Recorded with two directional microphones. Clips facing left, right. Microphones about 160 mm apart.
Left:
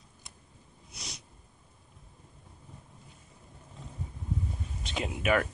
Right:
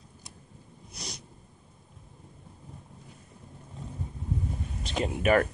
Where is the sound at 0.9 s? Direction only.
Centre (ahead or behind).